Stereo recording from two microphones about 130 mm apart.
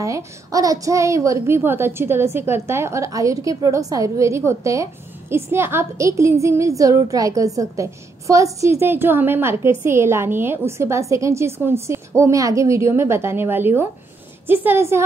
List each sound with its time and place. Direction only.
0.0 s a woman's voice: 25° right (ahead or behind)